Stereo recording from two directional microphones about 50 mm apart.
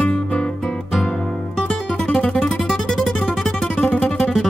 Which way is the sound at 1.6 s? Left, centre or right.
Left.